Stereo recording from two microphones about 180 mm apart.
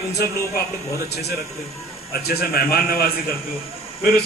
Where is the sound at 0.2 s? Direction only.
60° left (ahead or behind).